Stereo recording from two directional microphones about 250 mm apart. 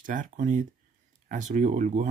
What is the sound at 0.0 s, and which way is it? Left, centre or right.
Speech, right.